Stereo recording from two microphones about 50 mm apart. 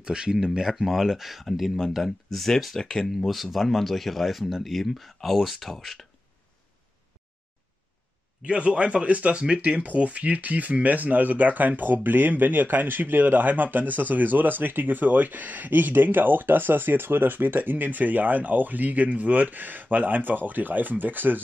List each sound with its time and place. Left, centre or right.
0.0 s speech: centre
3.1 s speech: centre
8.4 s speech: right